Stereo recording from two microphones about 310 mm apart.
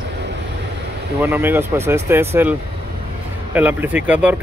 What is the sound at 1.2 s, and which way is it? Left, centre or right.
Speech, centre.